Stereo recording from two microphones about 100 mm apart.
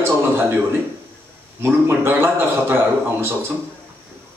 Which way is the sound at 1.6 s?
25° right (ahead or behind).